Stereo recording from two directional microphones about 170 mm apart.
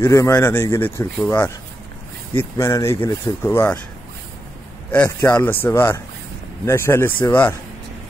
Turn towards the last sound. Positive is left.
turn(degrees=10)  # may be behind; listen again after turning